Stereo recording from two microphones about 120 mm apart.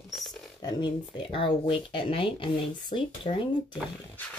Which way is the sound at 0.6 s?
35° left (ahead or behind).